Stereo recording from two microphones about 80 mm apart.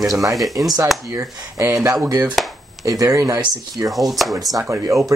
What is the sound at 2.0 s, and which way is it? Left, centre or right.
Speech, right.